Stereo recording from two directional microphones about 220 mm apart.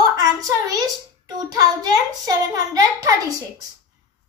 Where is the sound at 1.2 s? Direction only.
15° right (ahead or behind).